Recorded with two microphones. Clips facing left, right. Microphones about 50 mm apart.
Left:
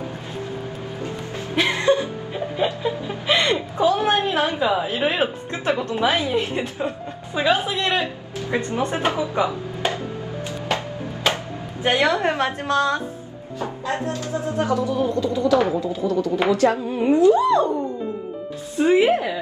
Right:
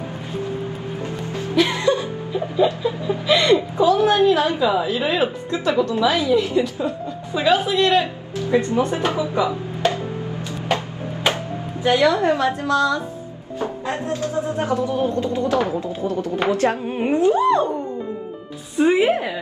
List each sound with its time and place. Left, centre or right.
1.5 s chuckle: left
7.3 s a woman's voice: left
9.8 s music: left
11.3 s a sound: right
11.8 s a woman's voice: left
14.0 s speech: right
18.8 s a woman's voice: right